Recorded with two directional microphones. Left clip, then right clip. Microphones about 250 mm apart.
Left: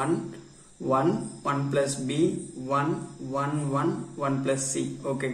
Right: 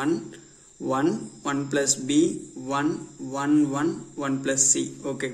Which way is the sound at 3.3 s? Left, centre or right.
Right.